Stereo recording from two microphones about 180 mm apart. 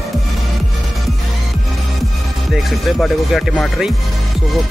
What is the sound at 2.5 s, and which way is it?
Speech, centre (ahead or behind).